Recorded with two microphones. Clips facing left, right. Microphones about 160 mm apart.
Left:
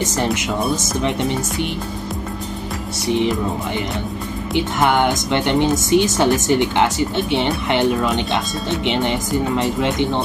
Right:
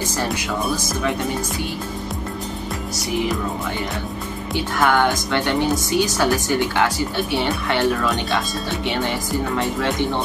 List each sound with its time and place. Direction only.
0.0 s speech: 20° left (ahead or behind)
3.1 s speech: 25° left (ahead or behind)
4.6 s speech: 20° left (ahead or behind)